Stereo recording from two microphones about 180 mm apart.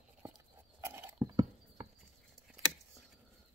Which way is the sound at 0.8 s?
15° right (ahead or behind).